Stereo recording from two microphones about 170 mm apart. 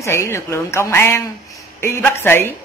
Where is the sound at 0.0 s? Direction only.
15° left (ahead or behind).